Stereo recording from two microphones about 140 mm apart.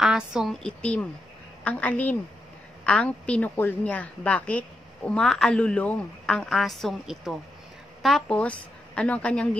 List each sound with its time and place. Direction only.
0.0 s a woman's voice: 5° right (ahead or behind)
0.6 s a woman's voice: 5° left (ahead or behind)